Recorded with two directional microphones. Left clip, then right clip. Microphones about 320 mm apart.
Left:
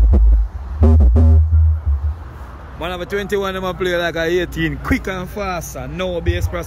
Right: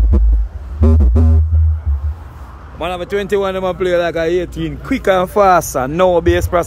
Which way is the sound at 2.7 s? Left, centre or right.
Centre.